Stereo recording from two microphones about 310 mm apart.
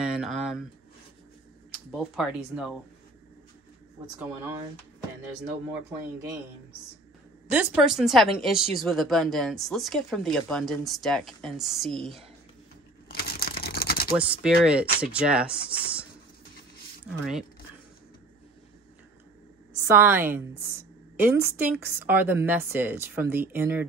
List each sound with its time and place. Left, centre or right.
0.0 s a sound: centre
1.9 s speech: centre
7.5 s speech: centre
13.1 s a sound: left
14.6 s speech: centre
17.2 s speech: centre
19.9 s a woman's voice: centre